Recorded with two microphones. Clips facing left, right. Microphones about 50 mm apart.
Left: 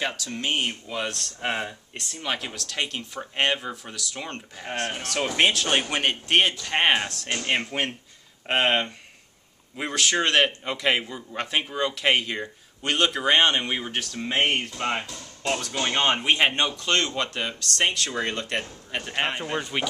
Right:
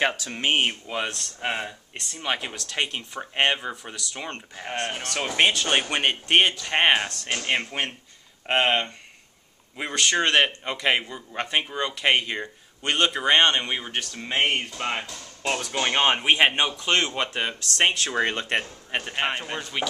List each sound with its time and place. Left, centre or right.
0.0 s speech: right
1.1 s speech: centre
19.2 s speech: centre
19.6 s speech: centre